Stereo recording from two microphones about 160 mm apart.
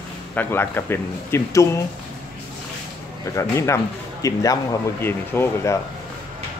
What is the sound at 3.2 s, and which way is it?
Speech, 20° left (ahead or behind).